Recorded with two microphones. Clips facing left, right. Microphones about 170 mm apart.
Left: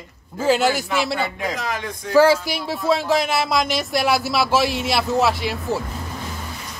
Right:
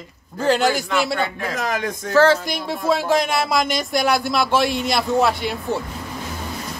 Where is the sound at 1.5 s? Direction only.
45° right (ahead or behind).